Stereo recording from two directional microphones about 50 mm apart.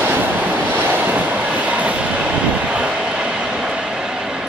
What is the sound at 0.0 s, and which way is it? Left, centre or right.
Train, right.